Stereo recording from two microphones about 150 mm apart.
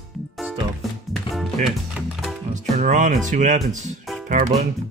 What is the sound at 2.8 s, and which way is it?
Speech, 55° right (ahead or behind).